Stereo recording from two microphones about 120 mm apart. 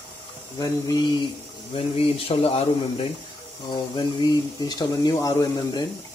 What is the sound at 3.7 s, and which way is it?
Speech, 40° left (ahead or behind).